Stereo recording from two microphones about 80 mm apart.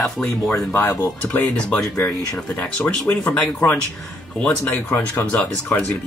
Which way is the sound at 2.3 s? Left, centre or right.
Left.